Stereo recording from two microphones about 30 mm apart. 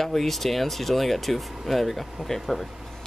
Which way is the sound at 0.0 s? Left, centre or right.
Centre.